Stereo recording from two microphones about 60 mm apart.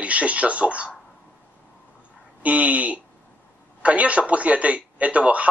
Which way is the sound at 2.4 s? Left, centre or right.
Right.